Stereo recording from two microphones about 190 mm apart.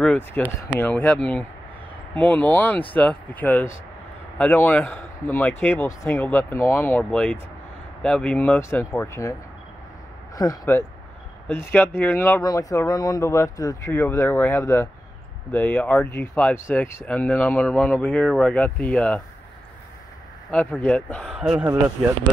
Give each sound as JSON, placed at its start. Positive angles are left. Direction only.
{"t": 0.0, "sound": "speech", "side_deg": 10}
{"t": 20.5, "sound": "speech", "side_deg": 5}